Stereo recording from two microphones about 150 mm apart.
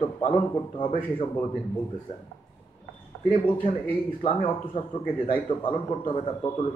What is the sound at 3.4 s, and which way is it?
A man's voice, 35° left (ahead or behind).